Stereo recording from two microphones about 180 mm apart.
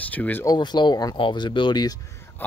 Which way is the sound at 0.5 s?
25° left (ahead or behind).